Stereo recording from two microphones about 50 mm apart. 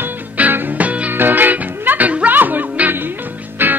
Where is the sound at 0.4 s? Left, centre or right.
Right.